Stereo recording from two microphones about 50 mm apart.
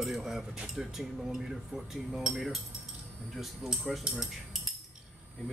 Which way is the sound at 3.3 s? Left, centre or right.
Centre.